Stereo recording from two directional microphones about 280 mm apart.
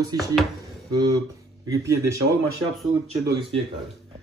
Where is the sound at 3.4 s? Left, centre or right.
Centre.